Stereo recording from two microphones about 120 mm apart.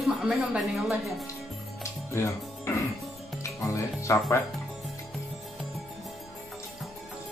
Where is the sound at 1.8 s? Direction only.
25° left (ahead or behind).